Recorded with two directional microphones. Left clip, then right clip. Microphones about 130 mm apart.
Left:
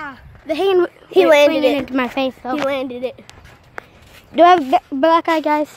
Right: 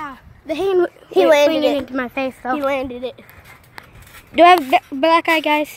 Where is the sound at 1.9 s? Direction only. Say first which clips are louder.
Left 3 dB; 70° left (ahead or behind).